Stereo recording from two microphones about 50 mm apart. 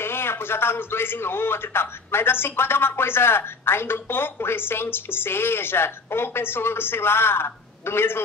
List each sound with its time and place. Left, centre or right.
0.0 s a man's voice: left